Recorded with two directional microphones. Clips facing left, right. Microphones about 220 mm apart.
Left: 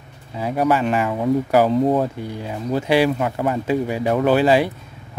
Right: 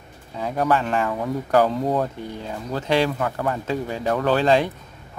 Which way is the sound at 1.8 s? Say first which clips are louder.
Left 5 dB; 20° left (ahead or behind).